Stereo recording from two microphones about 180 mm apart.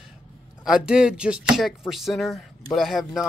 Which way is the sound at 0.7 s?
5° right (ahead or behind).